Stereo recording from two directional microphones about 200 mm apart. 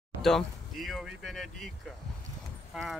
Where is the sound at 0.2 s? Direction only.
Centre (ahead or behind).